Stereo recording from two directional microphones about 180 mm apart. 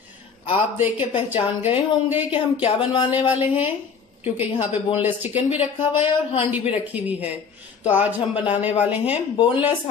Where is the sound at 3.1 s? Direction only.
10° right (ahead or behind).